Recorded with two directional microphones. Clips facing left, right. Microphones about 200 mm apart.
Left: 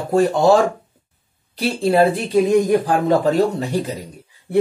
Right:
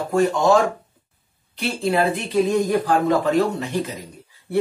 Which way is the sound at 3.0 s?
35° left (ahead or behind).